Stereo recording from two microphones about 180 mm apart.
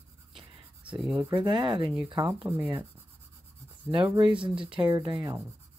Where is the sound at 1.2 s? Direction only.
20° right (ahead or behind).